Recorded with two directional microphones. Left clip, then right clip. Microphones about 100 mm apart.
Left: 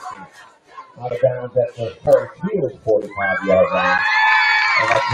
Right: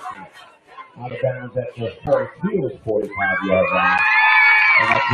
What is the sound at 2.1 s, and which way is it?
Speech, centre (ahead or behind).